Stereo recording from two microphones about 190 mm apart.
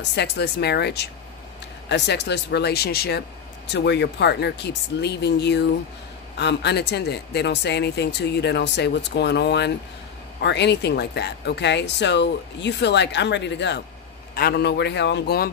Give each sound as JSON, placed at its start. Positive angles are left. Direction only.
{"t": 0.1, "sound": "speech", "side_deg": 60}